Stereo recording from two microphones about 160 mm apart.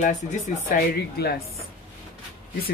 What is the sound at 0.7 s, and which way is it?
Speech, 80° left.